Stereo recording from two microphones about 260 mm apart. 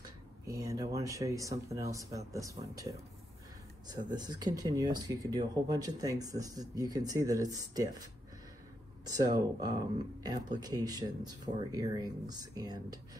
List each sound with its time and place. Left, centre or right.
0.5 s speech: centre
9.6 s speech: centre